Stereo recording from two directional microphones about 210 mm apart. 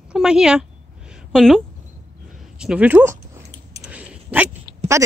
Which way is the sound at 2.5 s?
5° right (ahead or behind).